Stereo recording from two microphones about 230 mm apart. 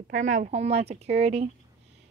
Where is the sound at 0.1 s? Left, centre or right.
Right.